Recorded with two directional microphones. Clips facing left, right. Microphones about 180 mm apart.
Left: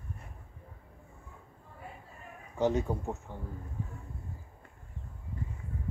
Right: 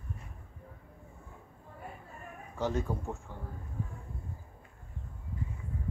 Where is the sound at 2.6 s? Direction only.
20° left (ahead or behind).